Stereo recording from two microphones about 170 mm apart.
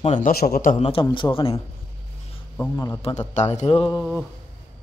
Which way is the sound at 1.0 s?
30° left (ahead or behind).